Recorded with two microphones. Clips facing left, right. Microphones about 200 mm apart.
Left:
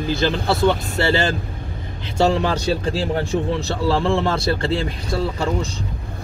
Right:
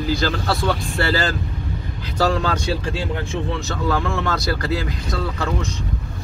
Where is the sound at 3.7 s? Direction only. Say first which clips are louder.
Left 4 dB; 30° left (ahead or behind).